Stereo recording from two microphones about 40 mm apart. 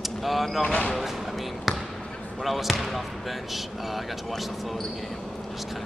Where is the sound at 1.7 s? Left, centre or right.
Centre.